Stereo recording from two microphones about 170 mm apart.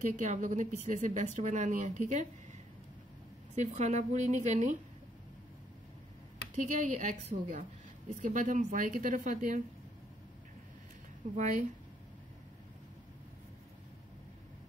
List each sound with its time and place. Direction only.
0.0 s a woman's voice: 45° right (ahead or behind)
3.5 s a woman's voice: 45° right (ahead or behind)
6.5 s a woman's voice: 45° right (ahead or behind)
11.3 s a woman's voice: 50° right (ahead or behind)